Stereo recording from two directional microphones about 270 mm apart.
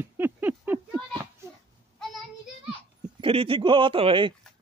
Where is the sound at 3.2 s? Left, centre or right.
Centre.